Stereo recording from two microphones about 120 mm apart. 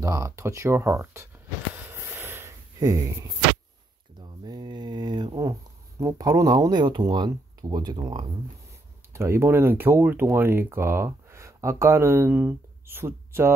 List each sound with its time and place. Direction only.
0.0 s speech: 25° right (ahead or behind)
1.8 s a sound: 20° right (ahead or behind); by 5.5 s 40° right (ahead or behind)
5.5 s speech: 30° right (ahead or behind)
9.1 s speech: 20° right (ahead or behind)